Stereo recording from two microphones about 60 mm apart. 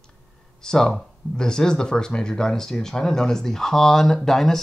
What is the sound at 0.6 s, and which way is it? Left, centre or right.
Speech, centre.